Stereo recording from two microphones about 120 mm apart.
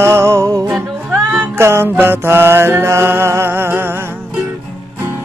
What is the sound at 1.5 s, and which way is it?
Mantra, 20° right (ahead or behind).